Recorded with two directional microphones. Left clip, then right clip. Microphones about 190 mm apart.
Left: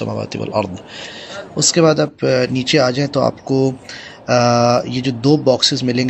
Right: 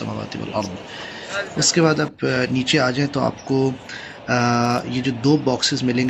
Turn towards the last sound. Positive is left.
turn(degrees=20)  # may be behind; listen again after turning